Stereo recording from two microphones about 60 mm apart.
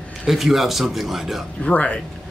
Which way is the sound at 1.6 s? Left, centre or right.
Left.